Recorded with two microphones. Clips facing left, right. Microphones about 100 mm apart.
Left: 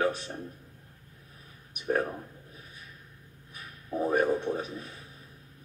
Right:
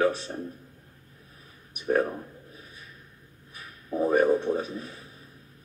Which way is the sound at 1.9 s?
10° right (ahead or behind).